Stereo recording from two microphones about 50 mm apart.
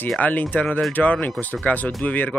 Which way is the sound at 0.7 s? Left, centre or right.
Centre.